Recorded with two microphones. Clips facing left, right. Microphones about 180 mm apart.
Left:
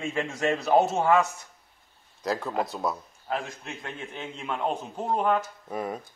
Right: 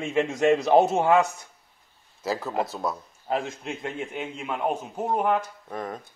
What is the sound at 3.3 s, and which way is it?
A man's voice, 25° right (ahead or behind).